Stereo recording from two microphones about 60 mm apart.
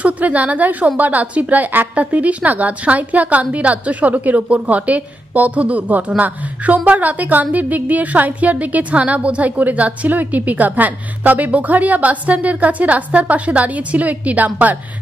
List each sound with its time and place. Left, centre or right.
0.0 s a woman's voice: right